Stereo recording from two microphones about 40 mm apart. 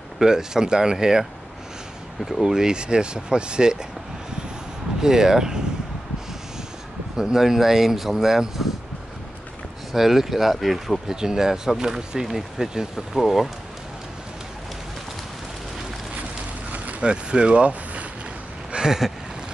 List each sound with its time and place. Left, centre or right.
0.2 s speech: centre
2.4 s speech: centre
5.0 s speech: centre
7.2 s speech: centre
9.9 s speech: centre
11.1 s speech: centre
17.0 s speech: right
18.7 s a sound: centre